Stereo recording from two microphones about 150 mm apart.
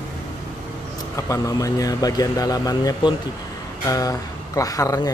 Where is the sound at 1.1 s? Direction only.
20° left (ahead or behind).